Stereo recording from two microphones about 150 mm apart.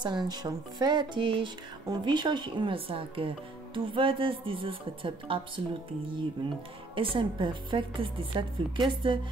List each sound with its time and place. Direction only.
0.0 s speech: 30° right (ahead or behind)
7.0 s speech: 35° right (ahead or behind)